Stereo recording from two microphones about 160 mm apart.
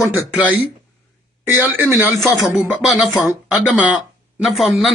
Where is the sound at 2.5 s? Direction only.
5° right (ahead or behind).